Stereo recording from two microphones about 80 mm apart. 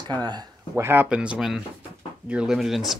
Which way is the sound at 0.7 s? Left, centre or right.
Right.